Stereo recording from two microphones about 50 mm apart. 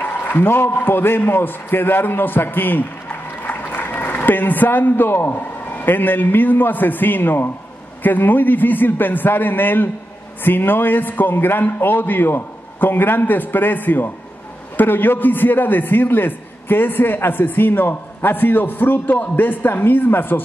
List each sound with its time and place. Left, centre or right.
0.0 s a man's voice: left